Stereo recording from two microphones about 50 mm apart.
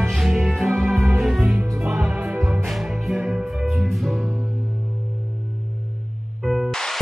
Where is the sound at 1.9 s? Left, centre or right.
Right.